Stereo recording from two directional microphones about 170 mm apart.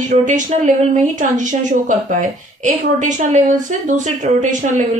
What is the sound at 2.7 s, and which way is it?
Speech, 45° right (ahead or behind).